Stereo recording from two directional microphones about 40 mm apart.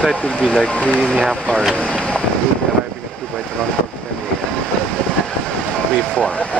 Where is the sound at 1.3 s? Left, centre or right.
Centre.